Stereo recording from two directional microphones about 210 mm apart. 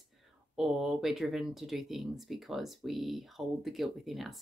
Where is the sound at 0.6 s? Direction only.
Centre (ahead or behind).